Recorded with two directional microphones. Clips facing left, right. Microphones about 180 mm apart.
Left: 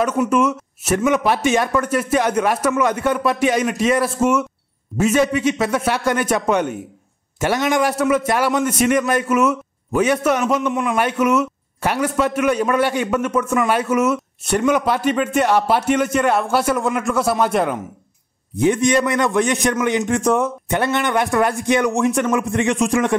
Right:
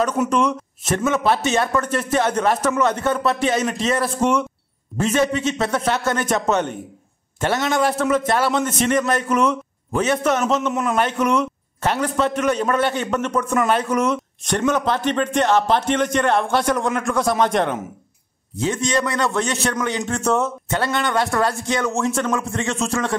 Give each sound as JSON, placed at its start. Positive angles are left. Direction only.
{"t": 0.2, "sound": "a man's voice", "side_deg": 5}
{"t": 10.7, "sound": "a man's voice", "side_deg": 0}
{"t": 18.6, "sound": "a man's voice", "side_deg": 15}